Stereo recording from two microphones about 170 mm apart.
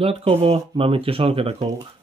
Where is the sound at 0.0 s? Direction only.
35° right (ahead or behind).